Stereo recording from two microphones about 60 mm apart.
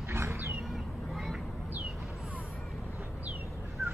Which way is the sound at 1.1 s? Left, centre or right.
Centre.